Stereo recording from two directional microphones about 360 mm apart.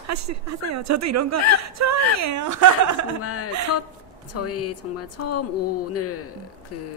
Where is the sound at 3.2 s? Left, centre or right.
Left.